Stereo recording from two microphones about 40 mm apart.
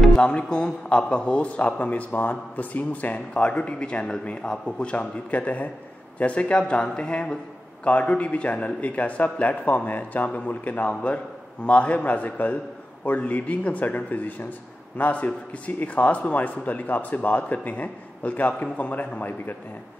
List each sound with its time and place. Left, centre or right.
0.2 s a man's voice: left
5.1 s a man's voice: left